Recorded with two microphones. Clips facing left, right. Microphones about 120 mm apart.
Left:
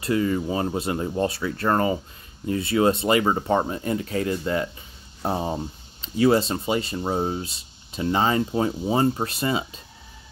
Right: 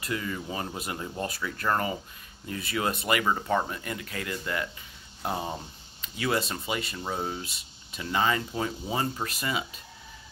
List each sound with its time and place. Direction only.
0.0 s speech: 30° left (ahead or behind)